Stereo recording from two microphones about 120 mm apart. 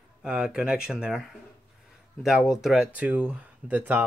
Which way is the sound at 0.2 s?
5° right (ahead or behind).